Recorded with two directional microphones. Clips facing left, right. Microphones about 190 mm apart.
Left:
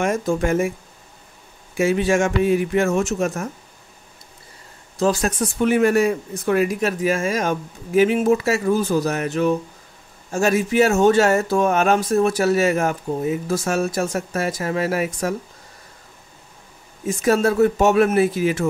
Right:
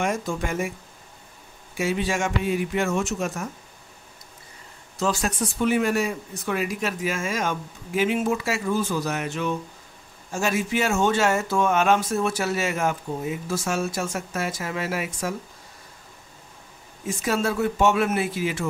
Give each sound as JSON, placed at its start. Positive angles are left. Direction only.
{"t": 0.0, "sound": "speech", "side_deg": 45}
{"t": 1.8, "sound": "speech", "side_deg": 50}
{"t": 4.9, "sound": "speech", "side_deg": 40}
{"t": 17.2, "sound": "speech", "side_deg": 40}